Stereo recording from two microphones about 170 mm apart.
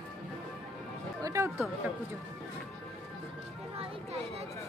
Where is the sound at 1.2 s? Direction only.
15° right (ahead or behind).